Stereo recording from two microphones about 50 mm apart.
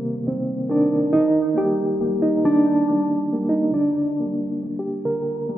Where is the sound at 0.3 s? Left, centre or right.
Centre.